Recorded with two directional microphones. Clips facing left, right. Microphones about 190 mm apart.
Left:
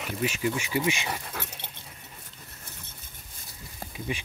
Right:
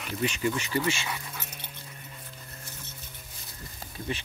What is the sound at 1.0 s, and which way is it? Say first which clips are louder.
Dog: left 3 dB; 50° left (ahead or behind).